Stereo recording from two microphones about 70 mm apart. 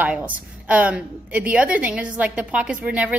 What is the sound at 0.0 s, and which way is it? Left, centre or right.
A woman's voice, centre.